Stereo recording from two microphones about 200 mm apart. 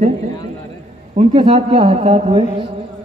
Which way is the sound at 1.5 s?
30° right (ahead or behind).